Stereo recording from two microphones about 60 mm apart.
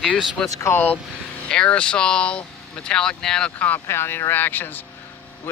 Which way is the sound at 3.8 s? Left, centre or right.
Left.